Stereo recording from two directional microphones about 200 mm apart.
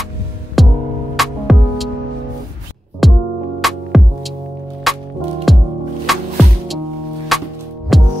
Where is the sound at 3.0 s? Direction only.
Centre (ahead or behind).